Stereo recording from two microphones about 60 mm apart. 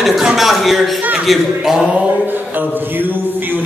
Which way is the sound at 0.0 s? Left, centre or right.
Centre.